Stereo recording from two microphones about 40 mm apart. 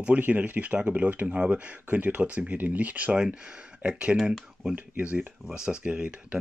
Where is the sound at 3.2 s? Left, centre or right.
Right.